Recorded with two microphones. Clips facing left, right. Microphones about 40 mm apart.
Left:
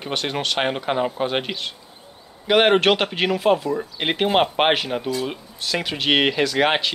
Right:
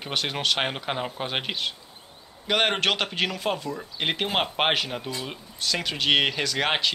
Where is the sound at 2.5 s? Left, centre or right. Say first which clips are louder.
Left 7 dB; centre.